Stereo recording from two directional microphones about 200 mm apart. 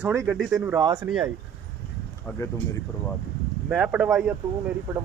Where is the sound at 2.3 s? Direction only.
10° left (ahead or behind).